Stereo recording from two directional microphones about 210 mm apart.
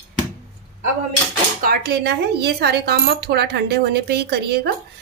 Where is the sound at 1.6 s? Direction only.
45° right (ahead or behind).